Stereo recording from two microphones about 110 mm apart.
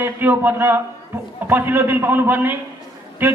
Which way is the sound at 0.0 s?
20° right (ahead or behind).